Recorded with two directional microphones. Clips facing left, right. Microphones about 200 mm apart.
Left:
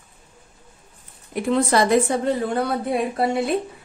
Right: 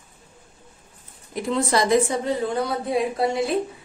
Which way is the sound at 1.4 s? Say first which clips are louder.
Left 3 dB; 60° left (ahead or behind).